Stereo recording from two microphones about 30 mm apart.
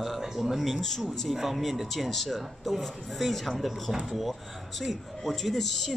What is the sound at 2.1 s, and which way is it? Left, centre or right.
Speech, centre.